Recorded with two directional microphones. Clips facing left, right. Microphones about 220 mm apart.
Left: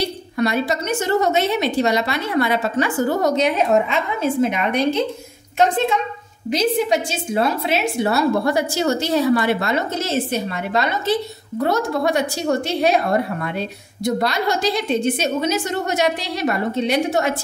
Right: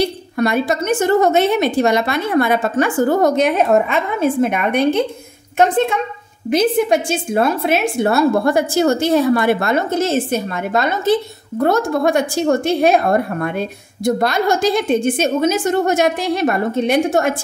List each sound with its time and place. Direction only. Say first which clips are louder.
0.0 s a woman's voice: right 3 dB; 50° right (ahead or behind)